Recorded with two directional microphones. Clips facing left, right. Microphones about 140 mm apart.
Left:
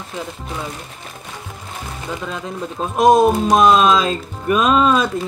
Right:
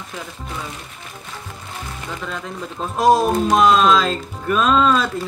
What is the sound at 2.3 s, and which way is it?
Speech, 15° left (ahead or behind).